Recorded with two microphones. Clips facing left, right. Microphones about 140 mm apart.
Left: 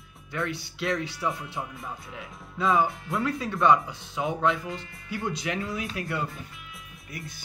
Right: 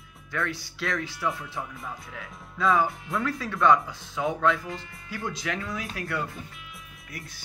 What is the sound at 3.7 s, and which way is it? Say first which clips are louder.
Speech: right 1 dB; 15° left (ahead or behind).